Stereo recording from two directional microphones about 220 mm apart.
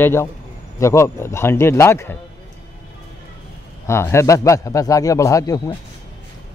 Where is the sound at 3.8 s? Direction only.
10° left (ahead or behind).